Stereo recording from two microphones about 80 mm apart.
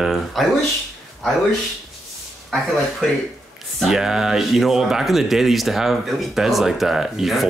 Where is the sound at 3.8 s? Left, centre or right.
Centre.